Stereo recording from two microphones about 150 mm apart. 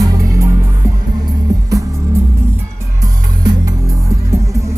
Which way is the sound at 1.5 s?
25° right (ahead or behind).